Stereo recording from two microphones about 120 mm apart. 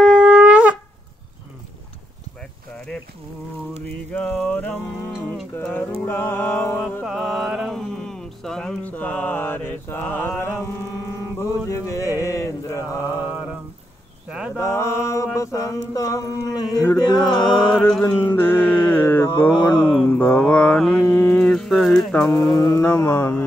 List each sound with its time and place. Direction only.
0.0 s shofar: 10° right (ahead or behind)
4.1 s music: 10° left (ahead or behind)
5.9 s mantra: 15° left (ahead or behind)
6.8 s music: 10° left (ahead or behind)
7.1 s mantra: centre (ahead or behind); by 13.0 s 25° left (ahead or behind)
13.0 s mantra: 15° right (ahead or behind)
14.6 s mantra: 25° left (ahead or behind)
18.0 s music: 20° left (ahead or behind)
19.5 s mantra: 35° left (ahead or behind)
20.1 s mantra: 10° left (ahead or behind)
22.3 s mantra: 35° left (ahead or behind)
22.8 s a sound: 20° left (ahead or behind)